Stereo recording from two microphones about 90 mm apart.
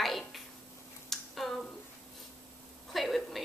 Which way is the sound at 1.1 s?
5° left (ahead or behind).